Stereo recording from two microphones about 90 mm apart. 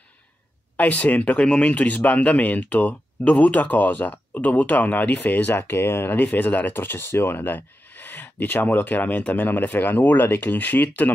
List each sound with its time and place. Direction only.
0.7 s speech: 15° left (ahead or behind)